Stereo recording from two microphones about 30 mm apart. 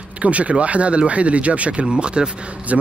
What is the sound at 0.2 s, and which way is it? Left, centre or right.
Speech, right.